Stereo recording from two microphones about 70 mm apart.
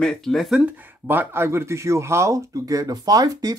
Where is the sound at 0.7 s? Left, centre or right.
Right.